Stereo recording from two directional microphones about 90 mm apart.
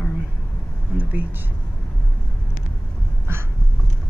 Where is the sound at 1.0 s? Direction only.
15° right (ahead or behind).